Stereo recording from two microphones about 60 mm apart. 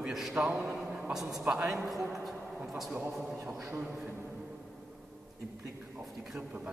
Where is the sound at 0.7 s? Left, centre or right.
Centre.